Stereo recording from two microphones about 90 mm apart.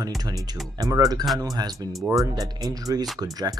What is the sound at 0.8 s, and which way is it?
Speech, 45° right (ahead or behind).